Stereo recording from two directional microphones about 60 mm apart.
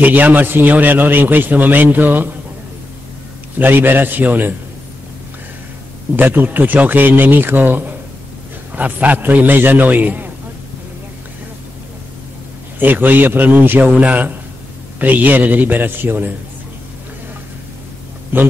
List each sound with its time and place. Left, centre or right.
0.0 s a man's voice: right
3.5 s a man's voice: right
6.1 s a man's voice: right
12.7 s a man's voice: right
18.3 s a man's voice: right